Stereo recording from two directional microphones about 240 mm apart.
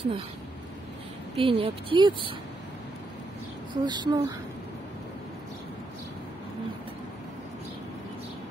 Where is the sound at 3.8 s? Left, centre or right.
Centre.